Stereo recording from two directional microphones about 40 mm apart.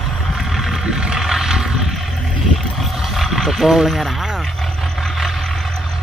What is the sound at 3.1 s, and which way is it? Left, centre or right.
Vehicle, centre.